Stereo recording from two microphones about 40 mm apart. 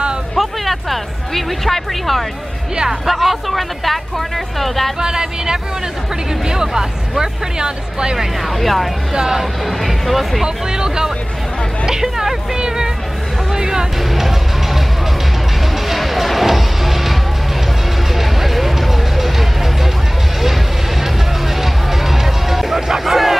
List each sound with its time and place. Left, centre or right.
0.4 s speech: centre
5.0 s speech: centre
8.5 s speech: centre
9.1 s speech: centre
9.7 s speech: centre
10.4 s speech: centre
13.5 s music: centre
14.1 s music: centre
15.9 s music: centre
21.5 s music: centre